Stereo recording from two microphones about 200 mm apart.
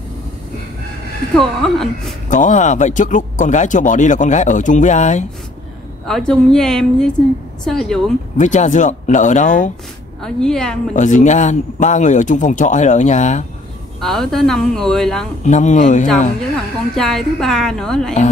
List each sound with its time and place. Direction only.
1.3 s a woman's voice: centre (ahead or behind)
2.2 s speech: 40° left (ahead or behind)
6.0 s a woman's voice: centre (ahead or behind)
8.4 s speech: 35° left (ahead or behind)
10.2 s a woman's voice: 5° left (ahead or behind)
10.9 s speech: 40° left (ahead or behind)
14.0 s a woman's voice: centre (ahead or behind)
15.4 s speech: 40° left (ahead or behind)
16.9 s a woman's voice: centre (ahead or behind)